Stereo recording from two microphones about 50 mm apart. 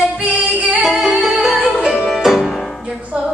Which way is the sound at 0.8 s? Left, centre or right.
Centre.